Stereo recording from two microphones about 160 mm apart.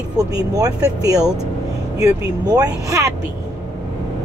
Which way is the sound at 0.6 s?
25° right (ahead or behind).